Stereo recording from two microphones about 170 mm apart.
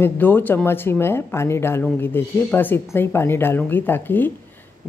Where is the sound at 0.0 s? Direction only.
10° left (ahead or behind).